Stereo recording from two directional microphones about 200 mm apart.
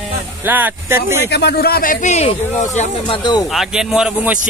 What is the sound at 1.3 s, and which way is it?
Speech, 55° left (ahead or behind).